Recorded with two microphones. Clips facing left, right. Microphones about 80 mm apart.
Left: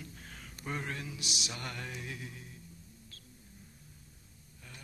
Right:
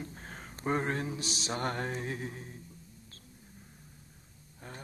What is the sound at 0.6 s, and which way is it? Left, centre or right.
Mantra, right.